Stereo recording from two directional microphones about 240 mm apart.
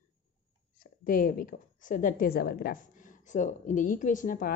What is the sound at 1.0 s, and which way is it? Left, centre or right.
A woman's voice, left.